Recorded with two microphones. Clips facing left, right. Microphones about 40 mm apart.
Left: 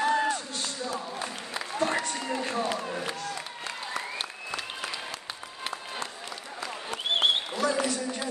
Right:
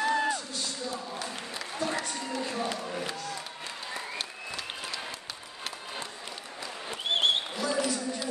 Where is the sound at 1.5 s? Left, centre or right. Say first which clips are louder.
Left 5 dB; left.